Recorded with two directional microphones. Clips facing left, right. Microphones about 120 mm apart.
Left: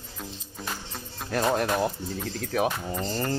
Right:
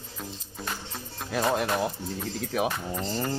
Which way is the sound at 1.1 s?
Centre (ahead or behind).